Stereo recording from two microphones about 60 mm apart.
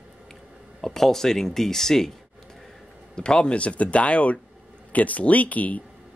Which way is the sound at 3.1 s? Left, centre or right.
Centre.